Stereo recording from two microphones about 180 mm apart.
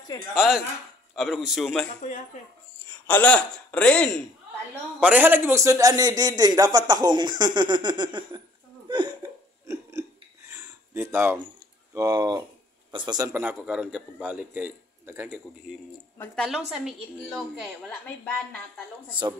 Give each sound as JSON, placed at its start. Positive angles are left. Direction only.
{"t": 0.3, "sound": "a woman's voice", "side_deg": -5}
{"t": 2.0, "sound": "speech", "side_deg": 45}
{"t": 3.1, "sound": "a man's voice", "side_deg": 10}
{"t": 5.0, "sound": "a man's voice", "side_deg": -10}
{"t": 8.8, "sound": "burping", "side_deg": -25}
{"t": 10.5, "sound": "a sound", "side_deg": -15}
{"t": 11.9, "sound": "a man's voice", "side_deg": -20}
{"t": 13.3, "sound": "a man's voice", "side_deg": -10}
{"t": 16.2, "sound": "a woman's voice", "side_deg": 0}